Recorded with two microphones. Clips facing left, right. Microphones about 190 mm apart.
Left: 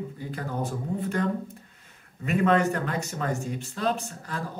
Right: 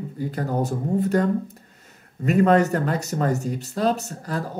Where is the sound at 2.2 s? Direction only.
40° right (ahead or behind).